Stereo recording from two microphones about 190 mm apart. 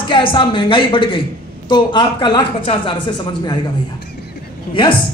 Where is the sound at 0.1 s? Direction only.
25° left (ahead or behind).